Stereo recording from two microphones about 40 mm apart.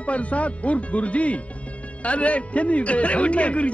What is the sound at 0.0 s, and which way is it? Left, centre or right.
Speech, left.